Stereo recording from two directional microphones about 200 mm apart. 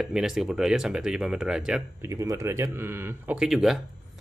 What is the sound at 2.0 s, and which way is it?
Speech, 15° right (ahead or behind).